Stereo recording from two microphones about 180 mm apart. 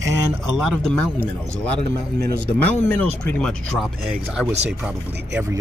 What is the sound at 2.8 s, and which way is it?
Speech, 10° left (ahead or behind).